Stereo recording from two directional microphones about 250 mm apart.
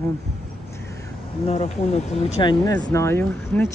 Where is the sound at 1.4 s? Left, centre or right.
Left.